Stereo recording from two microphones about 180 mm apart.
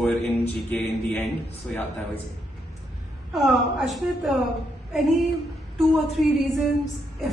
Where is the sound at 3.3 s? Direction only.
Centre (ahead or behind).